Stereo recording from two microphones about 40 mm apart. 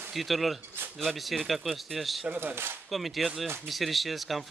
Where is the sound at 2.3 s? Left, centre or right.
Right.